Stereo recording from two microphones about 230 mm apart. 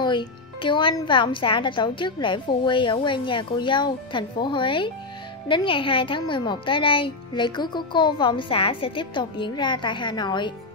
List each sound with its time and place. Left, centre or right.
0.0 s speech: centre